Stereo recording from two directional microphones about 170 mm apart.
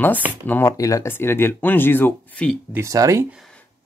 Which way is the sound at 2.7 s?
20° right (ahead or behind).